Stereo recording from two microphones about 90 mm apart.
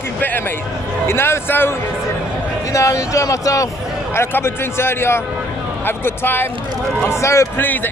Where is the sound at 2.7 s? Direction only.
35° left (ahead or behind).